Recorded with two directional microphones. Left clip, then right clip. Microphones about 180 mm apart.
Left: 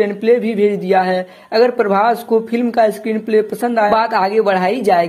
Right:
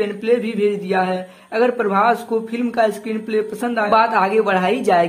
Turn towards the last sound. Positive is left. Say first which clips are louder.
# left 2 dB
turn(degrees=25)  # may be behind; listen again after turning